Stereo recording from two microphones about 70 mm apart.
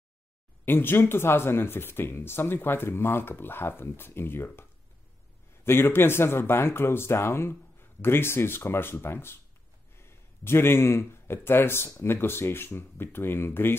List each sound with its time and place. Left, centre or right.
0.7 s speech: left